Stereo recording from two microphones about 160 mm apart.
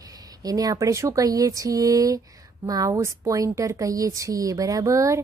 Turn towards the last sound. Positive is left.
turn(degrees=-20)  # may be behind; listen again after turning